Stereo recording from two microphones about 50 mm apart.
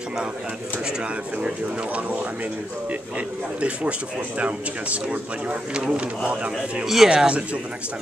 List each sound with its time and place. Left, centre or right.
2.0 s speech: right
6.8 s speech: centre
7.1 s speech: centre